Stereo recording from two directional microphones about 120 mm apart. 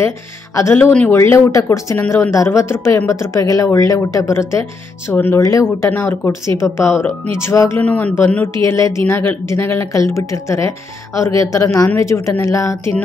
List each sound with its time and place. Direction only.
0.6 s speech: 20° left (ahead or behind)
7.8 s a man's voice: 10° left (ahead or behind)